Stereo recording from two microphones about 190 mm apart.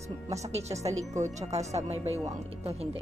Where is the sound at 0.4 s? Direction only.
35° right (ahead or behind).